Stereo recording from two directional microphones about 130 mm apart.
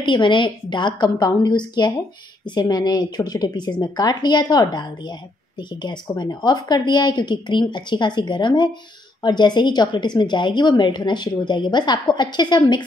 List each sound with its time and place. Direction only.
0.0 s a woman's voice: 40° left (ahead or behind)